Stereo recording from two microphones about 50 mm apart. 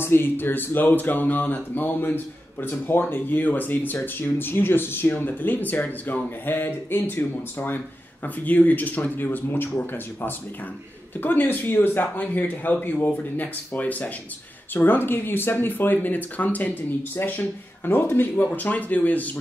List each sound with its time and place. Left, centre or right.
0.0 s speech: left
6.4 s speech: left
8.5 s speech: left
11.1 s speech: left
14.7 s speech: left
17.2 s speech: left
18.6 s speech: left